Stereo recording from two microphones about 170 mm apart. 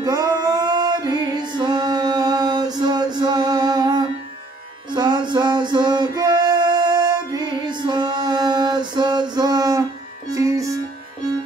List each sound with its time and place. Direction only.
0.0 s music: 25° right (ahead or behind)